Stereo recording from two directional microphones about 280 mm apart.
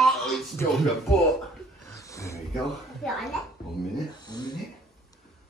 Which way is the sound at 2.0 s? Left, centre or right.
Centre.